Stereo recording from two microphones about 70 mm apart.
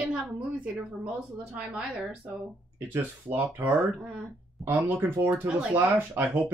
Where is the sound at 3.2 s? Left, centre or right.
Right.